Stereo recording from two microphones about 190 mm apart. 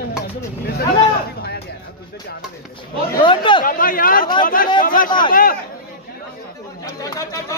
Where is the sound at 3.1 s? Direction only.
25° left (ahead or behind).